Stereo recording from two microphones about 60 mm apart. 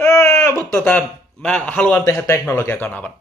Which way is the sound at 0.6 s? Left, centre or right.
Left.